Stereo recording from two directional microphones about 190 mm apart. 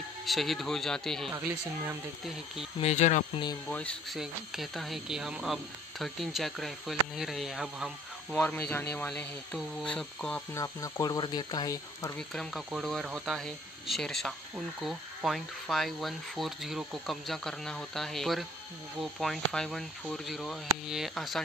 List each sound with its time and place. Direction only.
0.2 s speech: centre (ahead or behind)
1.3 s speech: 15° right (ahead or behind)
2.8 s speech: 35° left (ahead or behind)
3.7 s speech: 5° left (ahead or behind)
10.5 s speech: 20° left (ahead or behind)
12.2 s speech: centre (ahead or behind)